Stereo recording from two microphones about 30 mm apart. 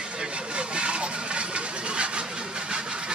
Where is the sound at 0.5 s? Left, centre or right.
Right.